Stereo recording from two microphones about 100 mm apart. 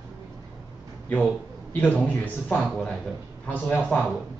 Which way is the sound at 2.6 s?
5° left (ahead or behind).